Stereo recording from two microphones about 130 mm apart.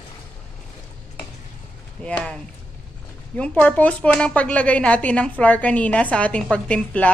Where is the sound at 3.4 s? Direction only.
10° left (ahead or behind).